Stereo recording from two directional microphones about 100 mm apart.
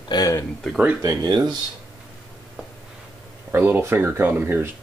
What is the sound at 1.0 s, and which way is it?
Speech, 40° right (ahead or behind).